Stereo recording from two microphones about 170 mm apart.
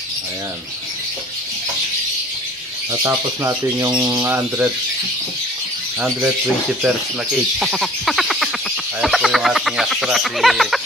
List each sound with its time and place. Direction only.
2.9 s speech: 15° right (ahead or behind)
5.9 s speech: centre (ahead or behind)
7.5 s a sound: centre (ahead or behind)
9.0 s speech: centre (ahead or behind)